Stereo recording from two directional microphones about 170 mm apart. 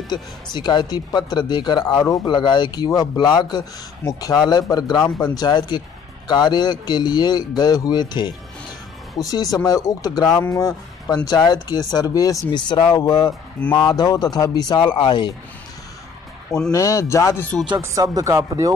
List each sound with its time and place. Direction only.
0.1 s a man's voice: 25° left (ahead or behind)
16.7 s speech: 20° left (ahead or behind)
17.6 s speech: 20° right (ahead or behind)